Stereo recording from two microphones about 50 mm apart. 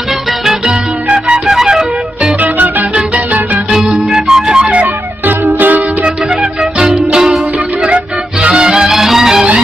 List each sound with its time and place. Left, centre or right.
1.1 s music: centre
3.7 s music: centre
5.2 s music: right
6.6 s music: centre